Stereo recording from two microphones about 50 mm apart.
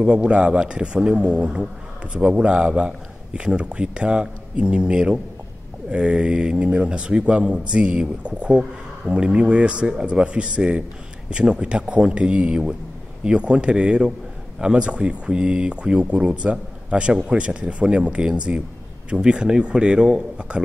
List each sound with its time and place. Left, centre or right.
0.0 s a man's voice: right